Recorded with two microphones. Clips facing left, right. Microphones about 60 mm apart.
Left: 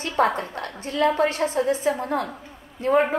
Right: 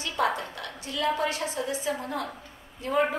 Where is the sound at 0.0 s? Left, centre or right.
Left.